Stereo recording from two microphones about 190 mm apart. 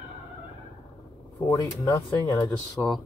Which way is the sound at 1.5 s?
20° left (ahead or behind).